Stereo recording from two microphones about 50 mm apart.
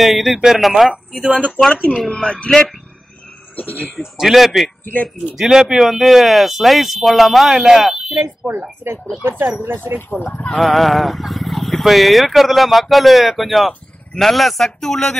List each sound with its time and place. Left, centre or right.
0.0 s speech: centre
1.7 s speech: centre
4.0 s speech: centre
8.1 s speech: right
9.9 s speech: left
10.6 s speech: centre